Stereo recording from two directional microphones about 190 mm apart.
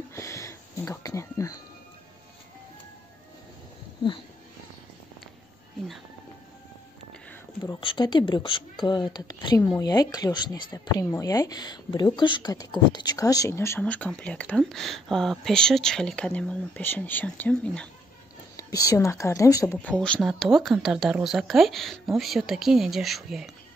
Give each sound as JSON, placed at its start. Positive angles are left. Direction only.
{"t": 0.1, "sound": "a sound", "side_deg": 15}
{"t": 7.8, "sound": "speech", "side_deg": 25}
{"t": 18.6, "sound": "speech", "side_deg": 20}